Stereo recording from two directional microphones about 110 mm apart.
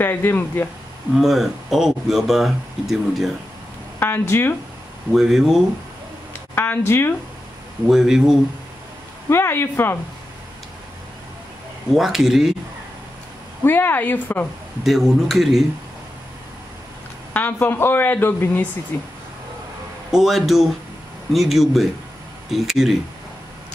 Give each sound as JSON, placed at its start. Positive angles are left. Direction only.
{"t": 0.0, "sound": "speech", "side_deg": 20}
{"t": 1.1, "sound": "speech", "side_deg": 0}
{"t": 4.0, "sound": "speech", "side_deg": 20}
{"t": 5.1, "sound": "speech", "side_deg": -5}
{"t": 6.5, "sound": "speech", "side_deg": 20}
{"t": 7.8, "sound": "speech", "side_deg": -5}
{"t": 9.3, "sound": "speech", "side_deg": 20}
{"t": 11.9, "sound": "speech", "side_deg": 0}
{"t": 13.7, "sound": "speech", "side_deg": 15}
{"t": 14.8, "sound": "speech", "side_deg": 0}
{"t": 17.3, "sound": "speech", "side_deg": 15}
{"t": 20.1, "sound": "speech", "side_deg": 0}